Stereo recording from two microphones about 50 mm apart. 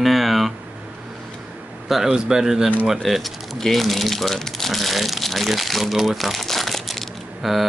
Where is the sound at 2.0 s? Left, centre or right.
Centre.